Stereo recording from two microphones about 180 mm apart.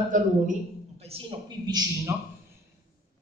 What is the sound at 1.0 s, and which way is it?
A man's voice, 30° right (ahead or behind).